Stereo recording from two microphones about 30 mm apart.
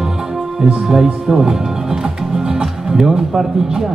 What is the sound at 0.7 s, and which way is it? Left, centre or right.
Music, centre.